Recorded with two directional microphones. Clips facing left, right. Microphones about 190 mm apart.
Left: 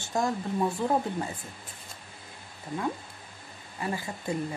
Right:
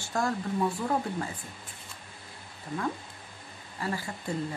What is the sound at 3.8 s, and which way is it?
Speech, 20° left (ahead or behind).